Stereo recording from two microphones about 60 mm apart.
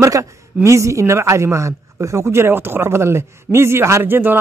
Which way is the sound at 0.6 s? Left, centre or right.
Right.